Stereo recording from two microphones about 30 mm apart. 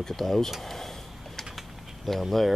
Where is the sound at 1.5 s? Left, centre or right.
Centre.